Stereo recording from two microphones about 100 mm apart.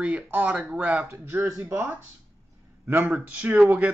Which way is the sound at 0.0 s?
15° right (ahead or behind).